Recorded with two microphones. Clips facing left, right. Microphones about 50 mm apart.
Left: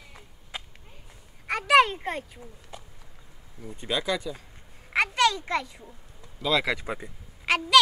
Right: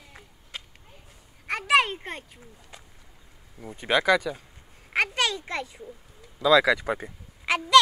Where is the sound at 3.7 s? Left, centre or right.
Right.